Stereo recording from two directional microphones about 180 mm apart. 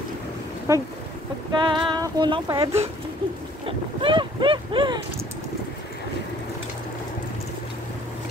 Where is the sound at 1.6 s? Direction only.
25° right (ahead or behind).